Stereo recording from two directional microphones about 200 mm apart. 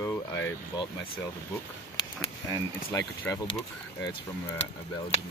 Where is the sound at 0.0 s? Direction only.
15° left (ahead or behind).